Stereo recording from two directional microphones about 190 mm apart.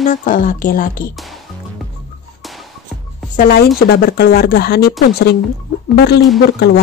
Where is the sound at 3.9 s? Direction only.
55° left (ahead or behind).